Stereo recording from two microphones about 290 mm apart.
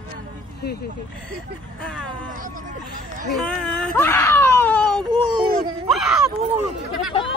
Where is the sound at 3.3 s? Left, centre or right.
Centre.